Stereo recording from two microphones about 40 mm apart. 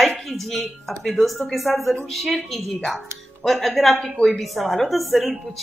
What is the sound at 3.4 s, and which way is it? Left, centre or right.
A woman's voice, centre.